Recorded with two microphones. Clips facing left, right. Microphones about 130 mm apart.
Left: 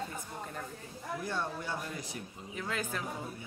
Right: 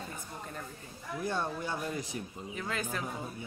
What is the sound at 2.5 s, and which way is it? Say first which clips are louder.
Speech: even; centre (ahead or behind).